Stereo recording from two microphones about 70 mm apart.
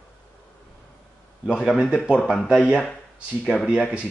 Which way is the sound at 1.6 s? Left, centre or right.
Centre.